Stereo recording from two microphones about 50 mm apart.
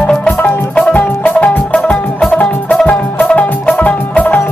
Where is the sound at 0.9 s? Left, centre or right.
Left.